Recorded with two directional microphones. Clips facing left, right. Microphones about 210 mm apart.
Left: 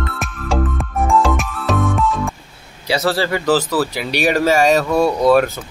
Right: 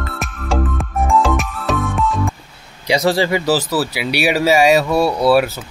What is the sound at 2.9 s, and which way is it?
Speech, 15° right (ahead or behind).